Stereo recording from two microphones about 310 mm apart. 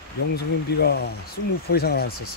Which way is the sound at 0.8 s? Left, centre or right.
Left.